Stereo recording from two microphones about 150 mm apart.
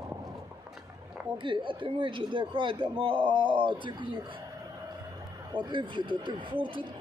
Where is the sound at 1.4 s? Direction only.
35° right (ahead or behind).